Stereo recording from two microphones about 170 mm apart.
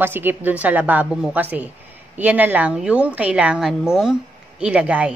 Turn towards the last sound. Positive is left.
turn(degrees=-10)  # may be behind; listen again after turning